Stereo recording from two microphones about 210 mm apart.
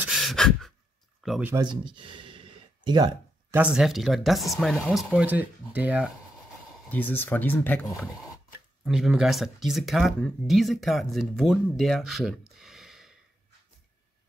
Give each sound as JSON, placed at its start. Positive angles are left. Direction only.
{"t": 0.0, "sound": "pant", "side_deg": 0}
{"t": 1.2, "sound": "speech", "side_deg": 0}
{"t": 1.5, "sound": "gasp", "side_deg": -20}
{"t": 3.5, "sound": "speech", "side_deg": -5}
{"t": 6.9, "sound": "speech", "side_deg": 10}